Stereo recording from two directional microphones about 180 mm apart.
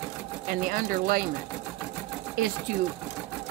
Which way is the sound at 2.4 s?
50° right (ahead or behind).